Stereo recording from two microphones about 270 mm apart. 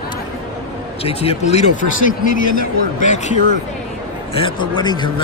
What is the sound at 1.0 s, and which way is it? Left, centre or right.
Speech, left.